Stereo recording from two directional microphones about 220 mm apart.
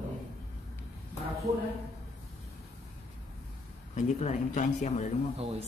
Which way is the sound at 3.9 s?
35° left (ahead or behind).